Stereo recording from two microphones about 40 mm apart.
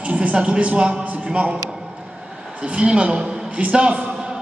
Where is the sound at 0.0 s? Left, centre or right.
Right.